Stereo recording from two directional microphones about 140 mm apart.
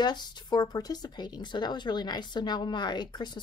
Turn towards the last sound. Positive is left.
turn(degrees=30)  # may be behind; listen again after turning